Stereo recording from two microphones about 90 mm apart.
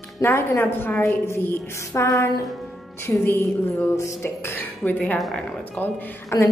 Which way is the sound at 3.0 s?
25° left (ahead or behind).